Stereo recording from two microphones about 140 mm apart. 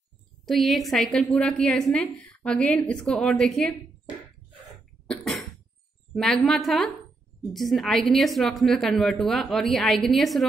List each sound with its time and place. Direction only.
0.5 s a woman's voice: centre (ahead or behind)
5.0 s cough: 5° left (ahead or behind)
6.1 s a woman's voice: 5° left (ahead or behind)